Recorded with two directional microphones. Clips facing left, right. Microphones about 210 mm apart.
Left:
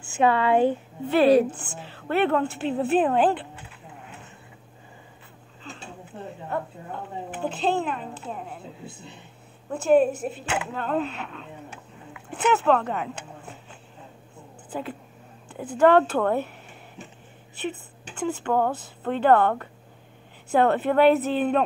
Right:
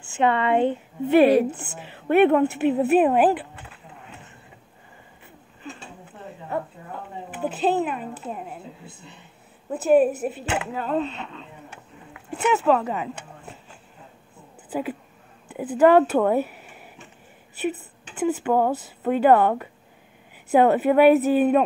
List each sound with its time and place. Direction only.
0.2 s speech: 5° left (ahead or behind)
1.0 s a woman's voice: 15° right (ahead or behind)
7.4 s a woman's voice: 5° right (ahead or behind)
9.8 s speech: 5° right (ahead or behind)
12.4 s speech: centre (ahead or behind)
14.7 s a sound: 10° right (ahead or behind)
15.8 s a woman's voice: 10° right (ahead or behind)
17.6 s a woman's voice: 10° right (ahead or behind)